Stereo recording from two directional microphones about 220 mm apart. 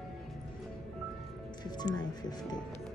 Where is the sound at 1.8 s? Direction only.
20° left (ahead or behind).